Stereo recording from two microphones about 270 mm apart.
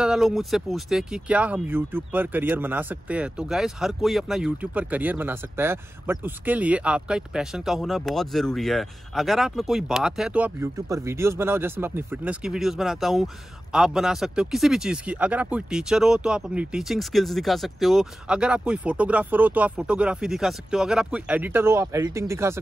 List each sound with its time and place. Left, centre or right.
0.0 s speech: centre